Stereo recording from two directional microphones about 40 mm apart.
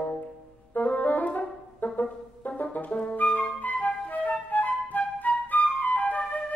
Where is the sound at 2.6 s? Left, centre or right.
Left.